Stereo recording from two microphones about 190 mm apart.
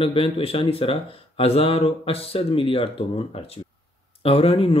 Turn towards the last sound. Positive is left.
turn(degrees=30)  # may be behind; listen again after turning